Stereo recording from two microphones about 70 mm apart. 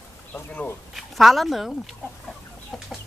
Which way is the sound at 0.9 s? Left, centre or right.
Centre.